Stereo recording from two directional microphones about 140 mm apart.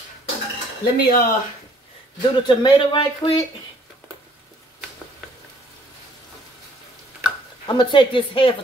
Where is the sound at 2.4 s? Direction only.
35° left (ahead or behind).